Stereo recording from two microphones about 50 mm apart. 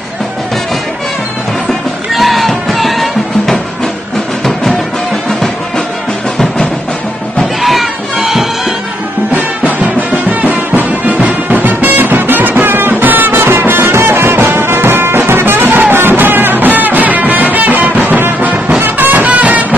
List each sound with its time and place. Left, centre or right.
2.1 s music: centre
7.6 s music: centre
9.3 s music: right